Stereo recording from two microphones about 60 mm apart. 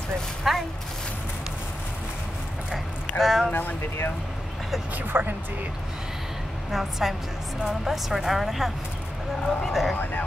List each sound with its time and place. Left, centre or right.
0.4 s a sound: centre
3.2 s speech: centre
3.5 s speech: left
4.9 s speech: right
6.7 s speech: centre